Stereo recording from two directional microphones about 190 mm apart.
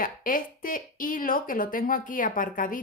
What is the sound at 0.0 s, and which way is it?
A woman's voice, 45° left (ahead or behind).